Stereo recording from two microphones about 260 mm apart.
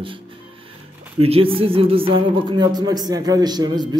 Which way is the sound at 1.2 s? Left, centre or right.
Right.